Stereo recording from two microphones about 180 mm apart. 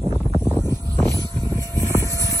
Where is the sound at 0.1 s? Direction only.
10° left (ahead or behind).